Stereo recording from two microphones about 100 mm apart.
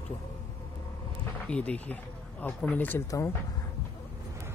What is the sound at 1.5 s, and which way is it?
Speech, 10° left (ahead or behind).